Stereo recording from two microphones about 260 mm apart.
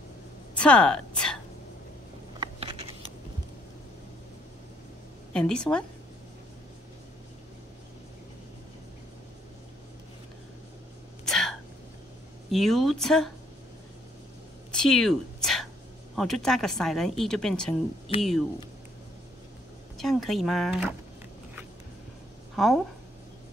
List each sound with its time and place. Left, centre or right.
0.6 s a woman's voice: centre
2.4 s a sound: right
5.3 s speech: centre
11.2 s a sound: centre
12.4 s speech: centre
14.7 s a sound: centre
16.2 s speech: centre
20.0 s speech: centre
22.6 s speech: centre